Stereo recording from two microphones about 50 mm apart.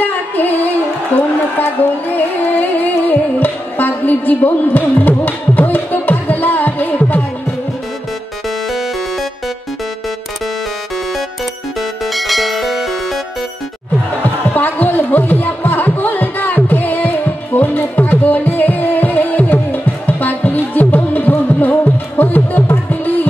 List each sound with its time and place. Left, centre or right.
0.0 s music: left
1.1 s a sound: left
1.6 s music: left
12.1 s music: centre
14.5 s music: left